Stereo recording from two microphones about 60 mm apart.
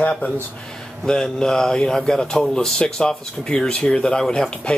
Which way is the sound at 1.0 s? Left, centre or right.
Centre.